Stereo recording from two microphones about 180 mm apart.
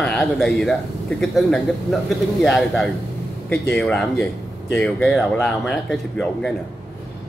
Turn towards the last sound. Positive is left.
turn(degrees=5)  # may be behind; listen again after turning